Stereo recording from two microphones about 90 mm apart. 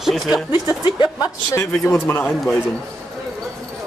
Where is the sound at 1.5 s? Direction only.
30° left (ahead or behind).